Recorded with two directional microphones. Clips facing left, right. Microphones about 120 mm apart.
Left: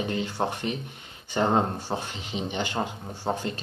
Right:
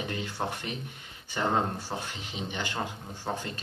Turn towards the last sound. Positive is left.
turn(degrees=25)  # may be behind; listen again after turning